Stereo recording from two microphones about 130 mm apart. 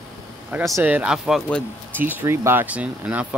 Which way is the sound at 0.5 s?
10° right (ahead or behind).